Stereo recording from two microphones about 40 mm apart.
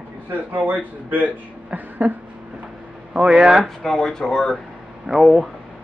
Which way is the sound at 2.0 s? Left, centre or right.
Right.